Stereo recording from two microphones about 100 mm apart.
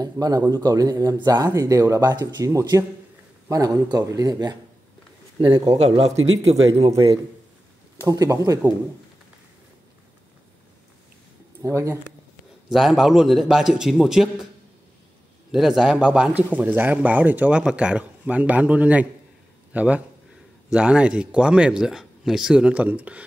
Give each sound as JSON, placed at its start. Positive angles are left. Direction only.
{"t": 0.0, "sound": "speech", "side_deg": -40}
{"t": 5.7, "sound": "a man's voice", "side_deg": -80}
{"t": 8.1, "sound": "speech", "side_deg": -35}
{"t": 11.6, "sound": "speech", "side_deg": -30}
{"t": 12.6, "sound": "a man's voice", "side_deg": -5}
{"t": 15.5, "sound": "a man's voice", "side_deg": -5}